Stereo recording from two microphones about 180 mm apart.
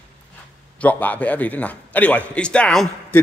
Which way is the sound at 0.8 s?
10° left (ahead or behind).